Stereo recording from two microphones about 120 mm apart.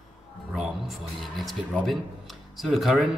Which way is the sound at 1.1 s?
Centre (ahead or behind).